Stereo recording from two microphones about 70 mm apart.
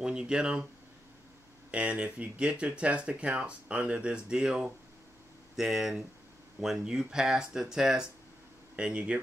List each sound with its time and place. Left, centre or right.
0.0 s speech: centre
1.7 s speech: centre